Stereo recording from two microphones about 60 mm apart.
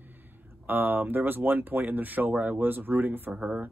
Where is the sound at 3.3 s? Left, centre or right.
Right.